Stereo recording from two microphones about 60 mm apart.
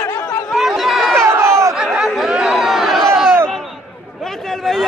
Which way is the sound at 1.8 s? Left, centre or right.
Centre.